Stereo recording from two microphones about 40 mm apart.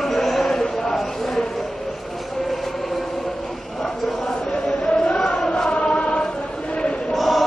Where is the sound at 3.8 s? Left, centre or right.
Centre.